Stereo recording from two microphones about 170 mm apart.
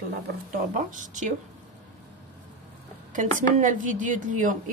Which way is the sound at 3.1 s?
50° right (ahead or behind).